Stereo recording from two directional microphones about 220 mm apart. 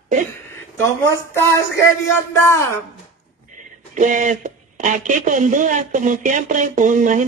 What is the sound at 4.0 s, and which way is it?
Speech, 35° right (ahead or behind).